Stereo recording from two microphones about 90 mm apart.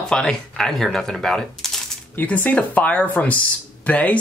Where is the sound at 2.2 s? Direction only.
20° left (ahead or behind).